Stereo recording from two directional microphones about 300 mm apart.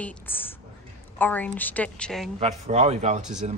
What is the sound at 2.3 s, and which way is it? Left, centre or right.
Speech, right.